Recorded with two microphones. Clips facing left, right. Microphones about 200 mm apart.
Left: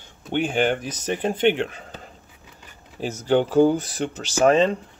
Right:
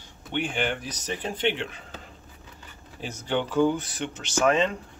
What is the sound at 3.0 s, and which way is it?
Speech, 40° left (ahead or behind).